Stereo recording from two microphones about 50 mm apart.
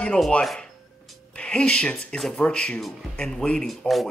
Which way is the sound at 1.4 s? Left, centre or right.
Left.